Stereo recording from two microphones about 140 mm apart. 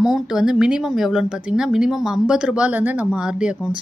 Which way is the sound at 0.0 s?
5° right (ahead or behind).